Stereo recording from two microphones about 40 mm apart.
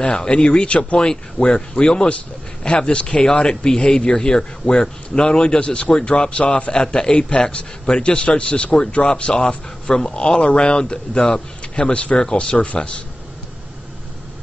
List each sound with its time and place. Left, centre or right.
0.0 s a man's voice: left
0.9 s a man's voice: centre
6.7 s a man's voice: centre